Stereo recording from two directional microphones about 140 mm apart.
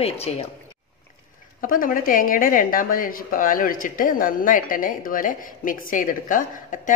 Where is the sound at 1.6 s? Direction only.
80° left.